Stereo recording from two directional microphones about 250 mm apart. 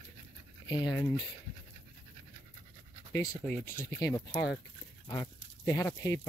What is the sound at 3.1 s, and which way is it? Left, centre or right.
Speech, centre.